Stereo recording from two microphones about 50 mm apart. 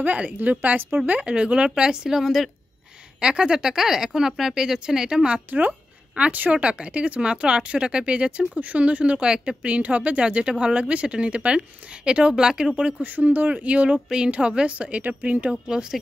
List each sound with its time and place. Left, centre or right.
0.0 s speech: right; by 2.5 s centre
3.2 s speech: centre
5.5 s speech: right
6.6 s speech: right
13.0 s speech: right
14.0 s speech: centre; by 15.5 s right
15.5 s speech: centre